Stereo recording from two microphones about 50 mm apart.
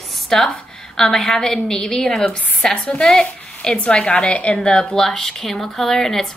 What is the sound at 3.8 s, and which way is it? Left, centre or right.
A woman's voice, left.